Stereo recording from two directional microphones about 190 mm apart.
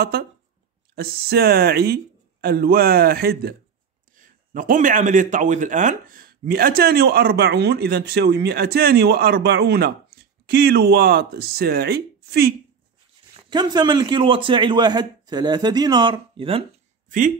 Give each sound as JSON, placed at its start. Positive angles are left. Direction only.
{"t": 0.0, "sound": "speech", "side_deg": -55}
{"t": 4.1, "sound": "speech", "side_deg": -45}
{"t": 13.5, "sound": "a man's voice", "side_deg": -20}